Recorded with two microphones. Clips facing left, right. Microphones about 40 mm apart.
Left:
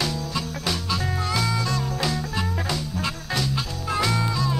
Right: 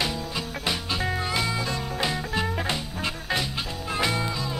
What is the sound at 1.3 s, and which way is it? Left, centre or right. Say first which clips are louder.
Music: left 2 dB; right.